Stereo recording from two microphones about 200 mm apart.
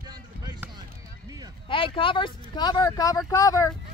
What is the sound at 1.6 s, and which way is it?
Speech, 25° left (ahead or behind).